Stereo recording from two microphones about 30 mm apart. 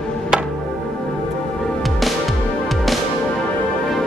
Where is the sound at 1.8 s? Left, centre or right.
Centre.